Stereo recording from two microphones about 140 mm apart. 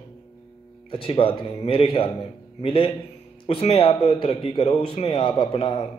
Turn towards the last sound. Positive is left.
turn(degrees=45)  # may be behind; listen again after turning